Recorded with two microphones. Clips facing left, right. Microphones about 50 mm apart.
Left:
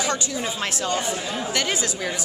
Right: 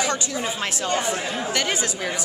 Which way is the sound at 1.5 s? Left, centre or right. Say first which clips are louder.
Even; centre.